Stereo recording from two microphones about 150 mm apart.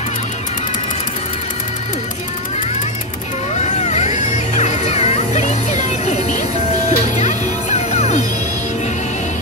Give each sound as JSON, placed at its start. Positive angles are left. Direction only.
{"t": 3.5, "sound": "music", "side_deg": 50}